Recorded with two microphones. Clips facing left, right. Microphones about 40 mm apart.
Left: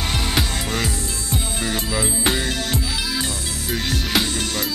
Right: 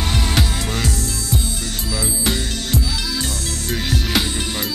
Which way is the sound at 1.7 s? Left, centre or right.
Left.